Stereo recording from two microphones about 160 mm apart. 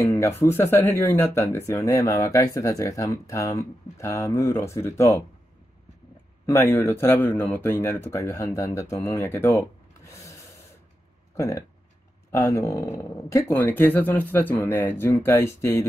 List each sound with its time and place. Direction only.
0.0 s speech: 15° left (ahead or behind)
6.4 s speech: 15° left (ahead or behind)